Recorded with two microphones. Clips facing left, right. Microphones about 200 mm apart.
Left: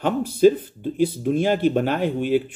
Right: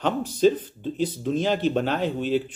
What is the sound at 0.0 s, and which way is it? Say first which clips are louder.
Speech: left 4 dB; 10° left (ahead or behind).